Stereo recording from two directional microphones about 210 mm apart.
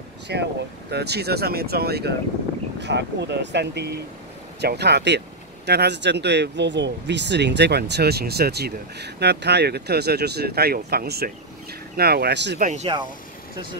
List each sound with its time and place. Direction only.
0.3 s speech: 50° right (ahead or behind)
12.6 s speech: 35° right (ahead or behind)